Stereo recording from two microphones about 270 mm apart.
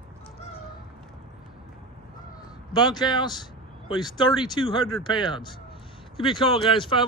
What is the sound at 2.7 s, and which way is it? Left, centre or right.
Speech, centre.